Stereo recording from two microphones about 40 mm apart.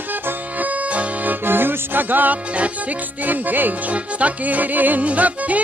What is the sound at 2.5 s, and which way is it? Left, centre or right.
Music, right.